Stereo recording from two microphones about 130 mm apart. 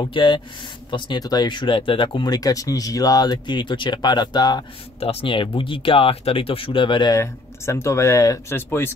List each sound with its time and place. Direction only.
0.0 s speech: 35° left (ahead or behind)
5.0 s speech: 45° left (ahead or behind)
7.2 s speech: 20° left (ahead or behind)